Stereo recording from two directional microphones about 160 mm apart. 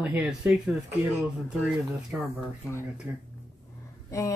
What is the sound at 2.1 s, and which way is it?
Speech, 10° right (ahead or behind).